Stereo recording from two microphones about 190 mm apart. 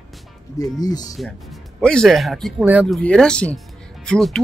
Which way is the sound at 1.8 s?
5° left (ahead or behind).